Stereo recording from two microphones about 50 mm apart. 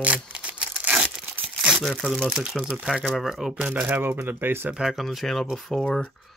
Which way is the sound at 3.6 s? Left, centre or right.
Right.